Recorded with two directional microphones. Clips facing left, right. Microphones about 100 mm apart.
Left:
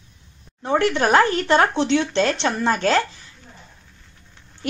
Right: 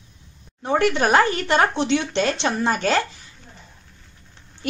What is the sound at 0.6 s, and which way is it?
A woman's voice, 5° right (ahead or behind).